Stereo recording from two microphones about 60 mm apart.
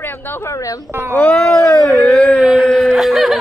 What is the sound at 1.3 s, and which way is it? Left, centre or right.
Speech, centre.